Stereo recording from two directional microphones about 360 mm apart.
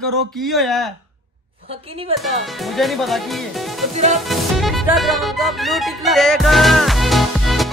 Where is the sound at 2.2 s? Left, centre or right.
Centre.